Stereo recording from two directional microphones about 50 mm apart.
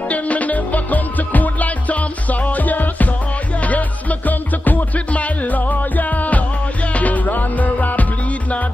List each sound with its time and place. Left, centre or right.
0.1 s music: left